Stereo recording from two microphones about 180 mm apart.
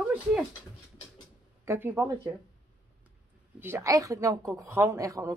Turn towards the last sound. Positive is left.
turn(degrees=-15)  # may be behind; listen again after turning